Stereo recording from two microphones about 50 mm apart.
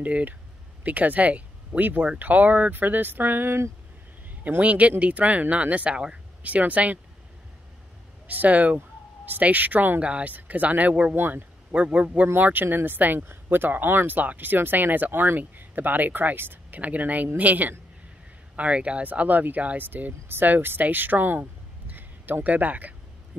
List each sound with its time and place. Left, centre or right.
0.0 s speech: right
4.6 s speech: right
6.4 s speech: right
8.3 s speech: right
10.0 s speech: right
11.1 s speech: right
11.7 s speech: right
12.4 s speech: right